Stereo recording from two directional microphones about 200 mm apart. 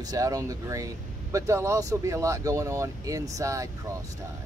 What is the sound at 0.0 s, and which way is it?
Speech, 20° right (ahead or behind).